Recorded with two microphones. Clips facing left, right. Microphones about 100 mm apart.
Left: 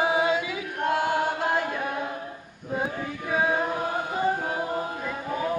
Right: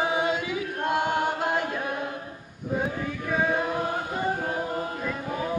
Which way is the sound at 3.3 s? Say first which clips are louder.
Left 1 dB; 10° left (ahead or behind).